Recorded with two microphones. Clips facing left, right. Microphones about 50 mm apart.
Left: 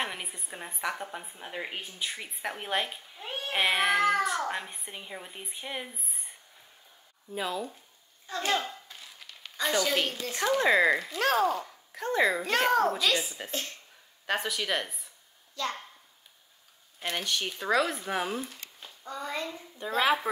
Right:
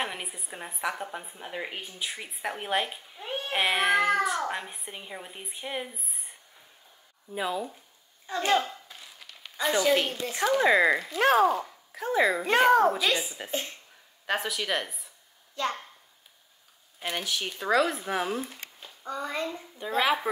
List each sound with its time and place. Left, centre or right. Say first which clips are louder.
0.0 s a woman's voice: right 1 dB; centre
7.3 s a child's voice: right 2 dB; centre
14.2 s a woman's voice: right 1 dB; centre
15.6 s a child's voice: right 3 dB; right
17.0 s a woman's voice: even; centre
19.0 s a child's voice: right 3 dB; centre
20.0 s a woman's voice: even; centre